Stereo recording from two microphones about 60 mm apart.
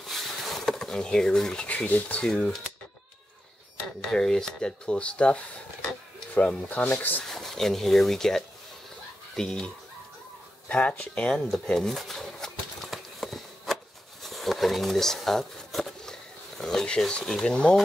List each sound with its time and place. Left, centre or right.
0.0 s a sound: centre
1.7 s speech: left
4.1 s speech: centre
6.7 s speech: left
7.2 s speech: centre
10.7 s a sound: centre
17.1 s speech: centre